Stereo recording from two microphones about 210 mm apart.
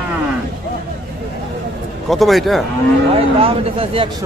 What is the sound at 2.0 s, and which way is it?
Speech, centre (ahead or behind).